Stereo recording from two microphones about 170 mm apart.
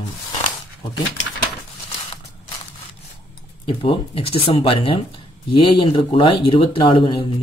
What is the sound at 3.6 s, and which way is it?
Speech, 30° left (ahead or behind).